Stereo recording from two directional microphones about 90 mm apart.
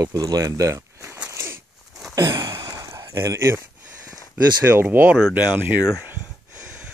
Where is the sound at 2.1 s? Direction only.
40° right (ahead or behind).